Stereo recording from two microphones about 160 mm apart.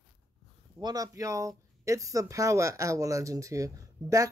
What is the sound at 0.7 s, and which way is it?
Speech, 25° right (ahead or behind).